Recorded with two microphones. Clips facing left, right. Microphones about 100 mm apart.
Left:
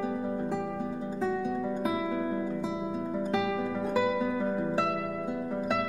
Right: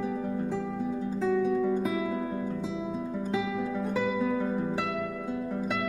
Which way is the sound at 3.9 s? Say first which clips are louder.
Left 2 dB; 10° left (ahead or behind).